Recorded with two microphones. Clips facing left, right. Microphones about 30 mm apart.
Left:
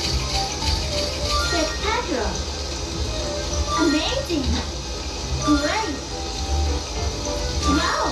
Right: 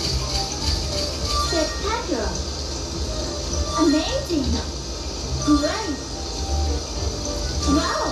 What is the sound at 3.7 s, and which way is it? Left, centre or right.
Music, left.